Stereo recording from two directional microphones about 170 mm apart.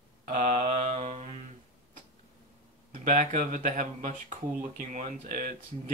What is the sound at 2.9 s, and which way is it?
Speech, 50° right (ahead or behind).